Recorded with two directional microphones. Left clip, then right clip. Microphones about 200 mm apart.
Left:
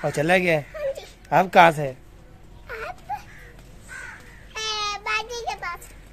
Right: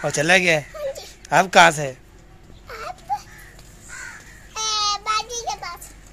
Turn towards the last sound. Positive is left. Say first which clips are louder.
# right 3 dB
turn(degrees=25)  # may be behind; listen again after turning